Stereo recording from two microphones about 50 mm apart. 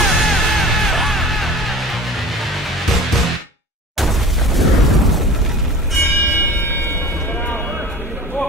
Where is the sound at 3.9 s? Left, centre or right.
Centre.